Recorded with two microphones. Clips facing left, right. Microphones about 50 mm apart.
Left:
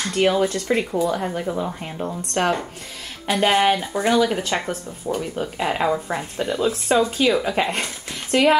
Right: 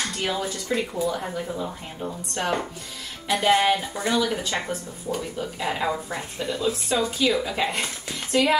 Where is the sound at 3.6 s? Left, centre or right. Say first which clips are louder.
Left 3 dB; left.